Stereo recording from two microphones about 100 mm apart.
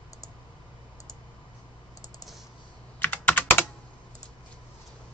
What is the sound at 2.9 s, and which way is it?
Computer keyboard, 20° left (ahead or behind).